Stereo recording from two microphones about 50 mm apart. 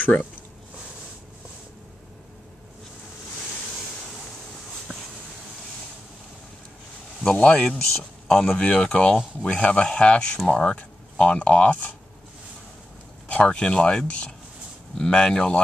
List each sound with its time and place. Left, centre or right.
0.0 s speech: left
7.3 s speech: left
13.3 s speech: centre